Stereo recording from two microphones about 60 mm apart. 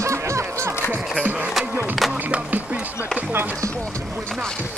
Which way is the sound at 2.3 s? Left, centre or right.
Right.